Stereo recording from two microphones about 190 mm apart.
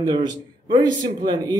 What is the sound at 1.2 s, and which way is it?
Speech, 20° right (ahead or behind).